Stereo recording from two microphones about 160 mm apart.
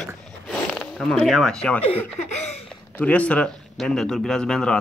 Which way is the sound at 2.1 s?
45° left (ahead or behind).